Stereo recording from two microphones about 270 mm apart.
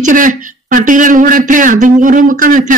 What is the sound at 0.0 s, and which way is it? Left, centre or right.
Speech, right.